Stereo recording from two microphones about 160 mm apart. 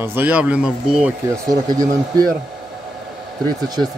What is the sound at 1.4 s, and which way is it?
Speech, 20° right (ahead or behind).